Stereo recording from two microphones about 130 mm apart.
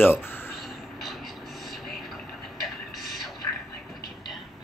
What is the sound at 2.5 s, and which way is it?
Music, centre (ahead or behind).